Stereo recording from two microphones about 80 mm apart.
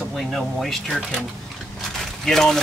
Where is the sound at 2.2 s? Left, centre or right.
Centre.